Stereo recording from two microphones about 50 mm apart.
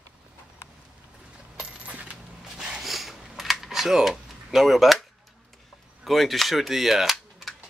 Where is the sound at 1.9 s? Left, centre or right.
Right.